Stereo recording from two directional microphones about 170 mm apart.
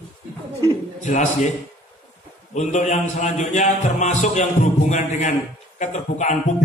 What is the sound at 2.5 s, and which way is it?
A man's voice, 45° left (ahead or behind).